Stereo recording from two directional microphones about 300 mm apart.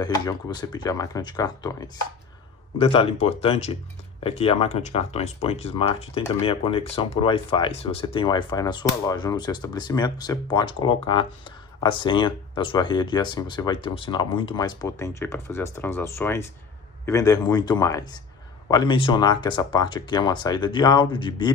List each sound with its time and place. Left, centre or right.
0.0 s speech: centre